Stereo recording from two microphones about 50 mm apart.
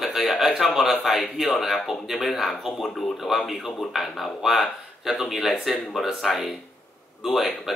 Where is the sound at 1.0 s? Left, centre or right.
Centre.